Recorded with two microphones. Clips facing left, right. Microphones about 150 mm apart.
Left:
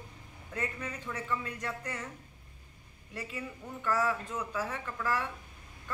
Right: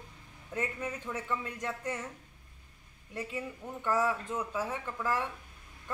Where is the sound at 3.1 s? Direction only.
20° right (ahead or behind).